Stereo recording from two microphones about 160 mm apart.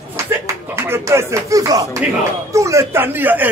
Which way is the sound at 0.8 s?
15° right (ahead or behind).